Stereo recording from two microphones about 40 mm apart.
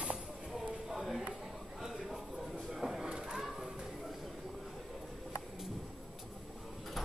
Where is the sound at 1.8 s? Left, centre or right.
Centre.